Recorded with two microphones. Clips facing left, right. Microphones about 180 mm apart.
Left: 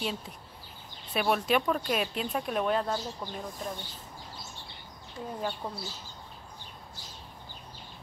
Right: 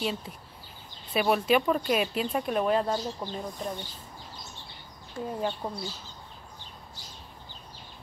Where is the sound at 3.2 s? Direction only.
20° right (ahead or behind).